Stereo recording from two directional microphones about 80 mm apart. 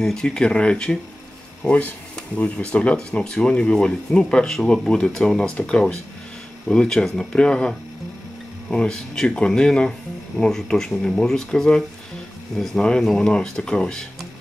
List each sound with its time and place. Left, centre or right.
0.0 s speech: centre